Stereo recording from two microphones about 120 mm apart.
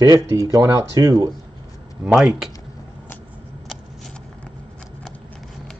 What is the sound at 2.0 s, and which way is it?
Speech, 5° right (ahead or behind).